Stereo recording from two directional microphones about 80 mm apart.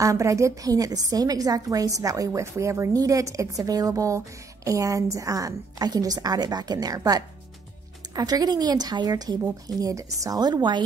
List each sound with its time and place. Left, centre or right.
0.0 s a woman's voice: right
10.4 s a woman's voice: right